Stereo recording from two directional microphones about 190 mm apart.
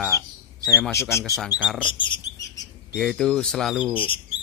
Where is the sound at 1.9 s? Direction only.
25° left (ahead or behind).